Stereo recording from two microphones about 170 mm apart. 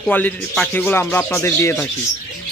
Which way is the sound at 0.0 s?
5° left (ahead or behind).